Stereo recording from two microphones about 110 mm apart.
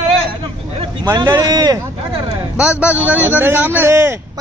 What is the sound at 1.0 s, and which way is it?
Speech, 35° right (ahead or behind).